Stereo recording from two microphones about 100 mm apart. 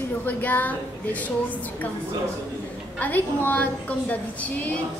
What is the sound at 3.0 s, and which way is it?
A woman's voice, 15° left (ahead or behind).